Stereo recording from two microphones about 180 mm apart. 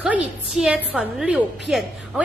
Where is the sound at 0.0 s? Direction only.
5° right (ahead or behind).